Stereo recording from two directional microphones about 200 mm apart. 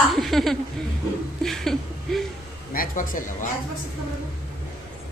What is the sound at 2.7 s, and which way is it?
Speech, 45° left (ahead or behind).